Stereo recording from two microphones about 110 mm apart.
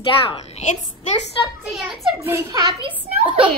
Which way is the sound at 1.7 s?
Centre (ahead or behind).